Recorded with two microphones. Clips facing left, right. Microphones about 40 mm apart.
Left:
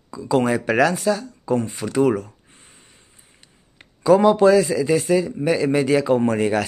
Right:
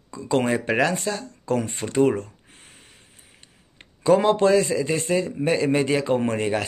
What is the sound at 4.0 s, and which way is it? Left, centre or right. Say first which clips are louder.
Speech: left 4 dB; right.